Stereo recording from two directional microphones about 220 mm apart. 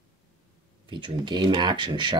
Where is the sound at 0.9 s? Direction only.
20° right (ahead or behind).